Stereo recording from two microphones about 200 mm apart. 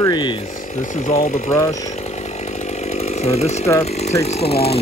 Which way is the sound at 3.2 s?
30° left (ahead or behind).